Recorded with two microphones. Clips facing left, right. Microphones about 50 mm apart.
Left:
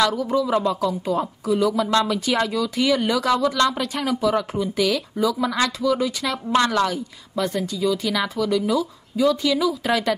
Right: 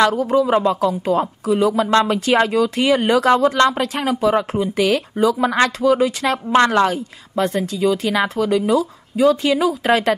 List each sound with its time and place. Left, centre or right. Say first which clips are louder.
0.0 s speech: right 5 dB; right
1.6 s speech: right 4 dB; right
3.8 s speech: right 4 dB; right
4.1 s speech: right 4 dB; right